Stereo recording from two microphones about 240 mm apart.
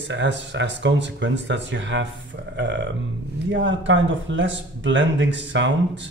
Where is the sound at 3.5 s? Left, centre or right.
Right.